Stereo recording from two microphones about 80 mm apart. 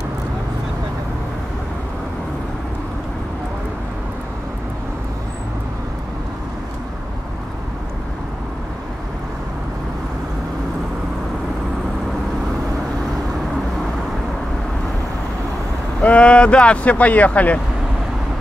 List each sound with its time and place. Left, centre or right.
16.0 s speech: centre